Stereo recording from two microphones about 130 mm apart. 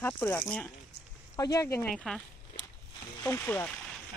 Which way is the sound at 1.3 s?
25° left (ahead or behind).